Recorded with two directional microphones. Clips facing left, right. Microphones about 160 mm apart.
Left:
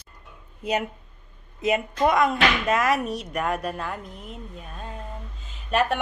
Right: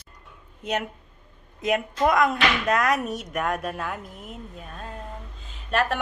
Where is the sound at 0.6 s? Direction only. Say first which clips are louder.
Left 2 dB; 5° left (ahead or behind).